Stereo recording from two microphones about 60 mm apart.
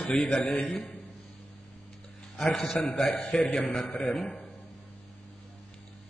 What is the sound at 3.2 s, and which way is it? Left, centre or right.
A man's voice, centre.